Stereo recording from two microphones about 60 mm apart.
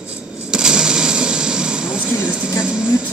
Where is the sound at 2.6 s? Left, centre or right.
Centre.